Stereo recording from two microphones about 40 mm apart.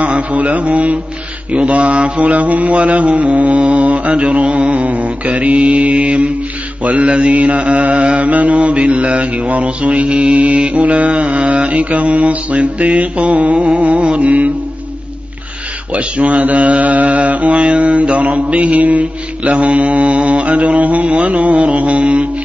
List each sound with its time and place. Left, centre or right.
0.0 s mantra: right
15.9 s mantra: right